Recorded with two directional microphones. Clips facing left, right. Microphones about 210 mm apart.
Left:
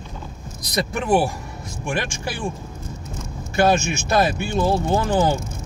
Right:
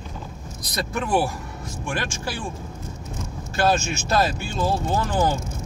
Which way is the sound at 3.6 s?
15° left (ahead or behind).